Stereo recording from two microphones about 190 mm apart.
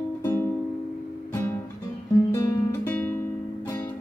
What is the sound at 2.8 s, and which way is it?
Music, 5° left (ahead or behind).